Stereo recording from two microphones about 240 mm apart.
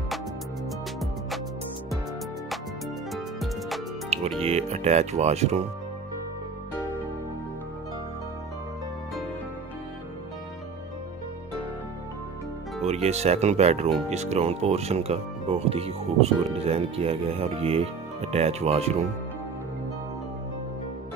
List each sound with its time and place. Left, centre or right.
3.1 s music: centre
4.4 s speech: right
12.8 s speech: right